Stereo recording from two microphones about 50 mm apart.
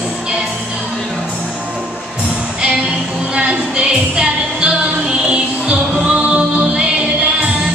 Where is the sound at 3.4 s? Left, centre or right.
Right.